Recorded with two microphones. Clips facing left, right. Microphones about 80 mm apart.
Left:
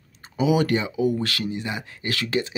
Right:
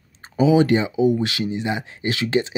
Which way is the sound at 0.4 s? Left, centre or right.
Right.